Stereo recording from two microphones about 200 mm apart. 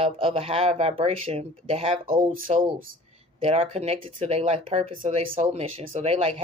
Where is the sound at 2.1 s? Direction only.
40° right (ahead or behind).